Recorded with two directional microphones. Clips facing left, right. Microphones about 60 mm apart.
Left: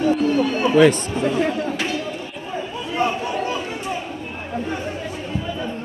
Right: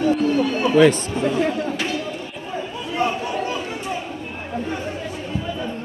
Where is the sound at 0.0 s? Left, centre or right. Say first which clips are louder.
Even; left.